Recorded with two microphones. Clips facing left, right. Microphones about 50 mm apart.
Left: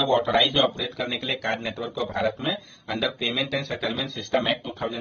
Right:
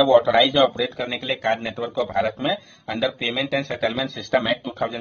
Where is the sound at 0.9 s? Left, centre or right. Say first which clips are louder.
Right 2 dB; right.